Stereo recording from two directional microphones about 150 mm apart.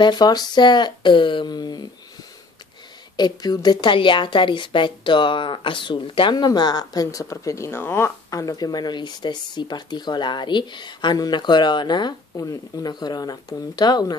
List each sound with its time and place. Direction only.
0.0 s speech: 30° left (ahead or behind)
3.2 s a woman's voice: 30° left (ahead or behind)